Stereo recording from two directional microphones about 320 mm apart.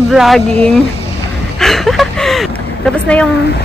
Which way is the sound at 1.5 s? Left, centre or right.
Centre.